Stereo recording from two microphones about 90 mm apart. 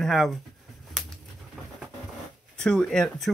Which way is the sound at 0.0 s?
Centre (ahead or behind).